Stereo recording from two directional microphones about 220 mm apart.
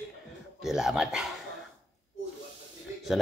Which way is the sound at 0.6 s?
Centre (ahead or behind).